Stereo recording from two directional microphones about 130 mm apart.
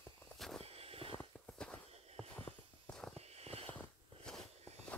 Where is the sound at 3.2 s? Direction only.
55° right (ahead or behind).